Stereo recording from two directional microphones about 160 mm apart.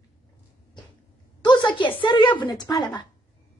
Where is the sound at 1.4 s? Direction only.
30° left (ahead or behind).